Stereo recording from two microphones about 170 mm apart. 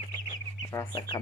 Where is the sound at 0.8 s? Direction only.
15° left (ahead or behind).